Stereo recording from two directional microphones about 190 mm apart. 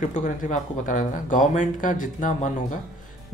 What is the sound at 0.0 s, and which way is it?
Speech, 45° left (ahead or behind).